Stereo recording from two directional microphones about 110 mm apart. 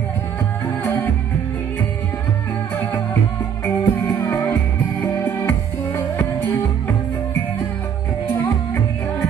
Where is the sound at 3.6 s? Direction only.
20° left (ahead or behind).